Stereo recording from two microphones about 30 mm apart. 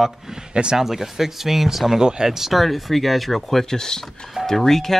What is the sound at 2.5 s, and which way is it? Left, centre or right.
Speech, centre.